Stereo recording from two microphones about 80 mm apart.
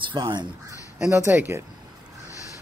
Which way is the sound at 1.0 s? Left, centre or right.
Right.